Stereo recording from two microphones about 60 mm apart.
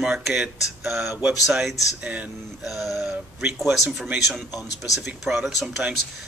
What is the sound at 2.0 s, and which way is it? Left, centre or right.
Speech, right.